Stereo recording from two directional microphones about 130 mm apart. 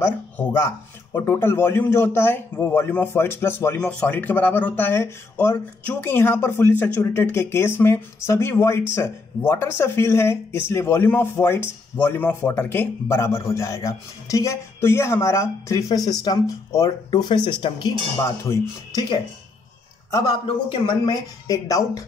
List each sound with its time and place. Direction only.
1.1 s speech: 15° left (ahead or behind); by 17.9 s 35° left (ahead or behind)
18.2 s speech: 20° left (ahead or behind)
20.4 s speech: 40° left (ahead or behind)